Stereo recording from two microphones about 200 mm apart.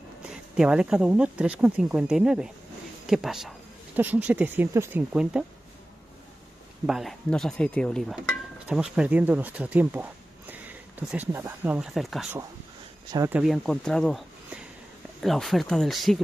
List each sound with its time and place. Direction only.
0.3 s speech: 5° right (ahead or behind)
6.9 s speech: centre (ahead or behind)
13.1 s speech: 15° right (ahead or behind)
13.4 s speech: centre (ahead or behind)